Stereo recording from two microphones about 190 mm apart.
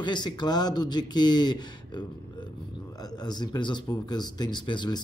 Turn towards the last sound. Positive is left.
turn(degrees=25)  # may be behind; listen again after turning